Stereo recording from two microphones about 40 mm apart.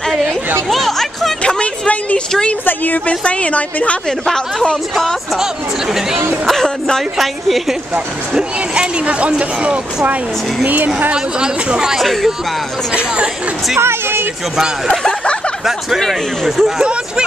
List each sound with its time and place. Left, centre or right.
0.7 s chatter: centre
1.4 s a sound: left
2.6 s a sound: left
3.1 s a woman's voice: left
7.2 s a woman's voice: centre
9.0 s speech: right
11.3 s speech: centre
12.0 s a woman's voice: centre
13.7 s speech: right
16.4 s a woman's voice: centre